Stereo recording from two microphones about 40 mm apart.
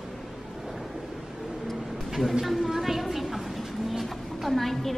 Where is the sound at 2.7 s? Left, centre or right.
Centre.